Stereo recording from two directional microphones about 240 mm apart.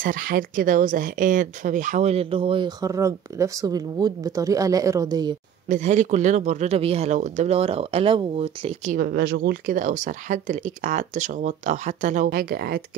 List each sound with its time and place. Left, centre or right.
0.0 s speech: right; by 5.3 s centre
5.7 s speech: right